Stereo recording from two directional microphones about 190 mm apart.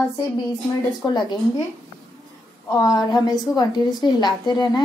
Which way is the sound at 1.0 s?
20° left (ahead or behind).